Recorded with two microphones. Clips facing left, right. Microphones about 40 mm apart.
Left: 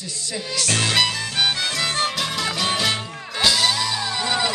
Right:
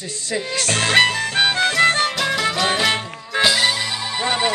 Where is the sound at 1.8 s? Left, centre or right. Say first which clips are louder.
Right 9 dB; right.